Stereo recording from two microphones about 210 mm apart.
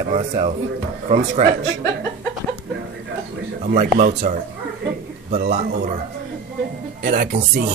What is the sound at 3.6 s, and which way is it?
Speech, 35° right (ahead or behind).